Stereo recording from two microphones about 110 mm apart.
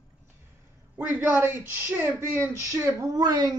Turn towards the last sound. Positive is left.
turn(degrees=-35)  # may be behind; listen again after turning